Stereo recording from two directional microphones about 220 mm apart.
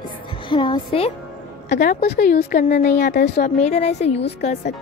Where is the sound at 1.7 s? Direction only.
40° left (ahead or behind).